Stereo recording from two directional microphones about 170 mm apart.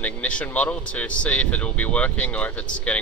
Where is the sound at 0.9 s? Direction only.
5° left (ahead or behind).